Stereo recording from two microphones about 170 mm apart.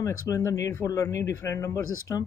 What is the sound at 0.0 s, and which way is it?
Speech, 15° left (ahead or behind).